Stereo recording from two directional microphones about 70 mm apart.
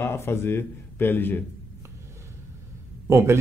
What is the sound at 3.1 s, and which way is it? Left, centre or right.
Speech, right.